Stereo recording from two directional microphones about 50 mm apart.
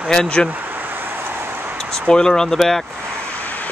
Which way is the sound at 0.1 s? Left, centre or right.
Centre.